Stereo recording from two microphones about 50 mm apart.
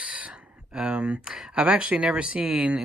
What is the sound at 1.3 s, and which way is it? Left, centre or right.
Speech, centre.